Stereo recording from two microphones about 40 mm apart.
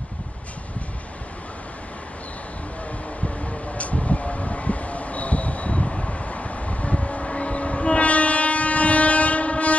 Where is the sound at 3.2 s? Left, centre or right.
Left.